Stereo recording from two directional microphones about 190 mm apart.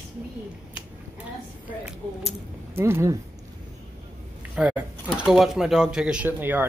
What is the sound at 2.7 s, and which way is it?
Speech, 15° right (ahead or behind).